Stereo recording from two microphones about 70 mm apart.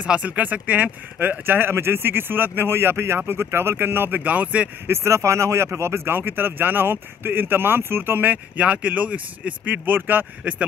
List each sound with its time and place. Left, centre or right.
0.0 s speech: centre
4.8 s speech: right